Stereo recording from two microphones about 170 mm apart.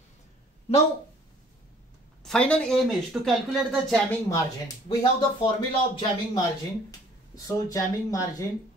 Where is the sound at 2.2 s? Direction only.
5° left (ahead or behind).